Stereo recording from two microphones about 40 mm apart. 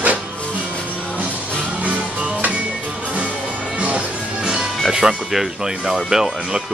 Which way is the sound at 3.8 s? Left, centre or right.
Right.